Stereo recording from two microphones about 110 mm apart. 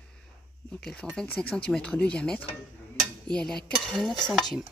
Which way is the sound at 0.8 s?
10° left (ahead or behind).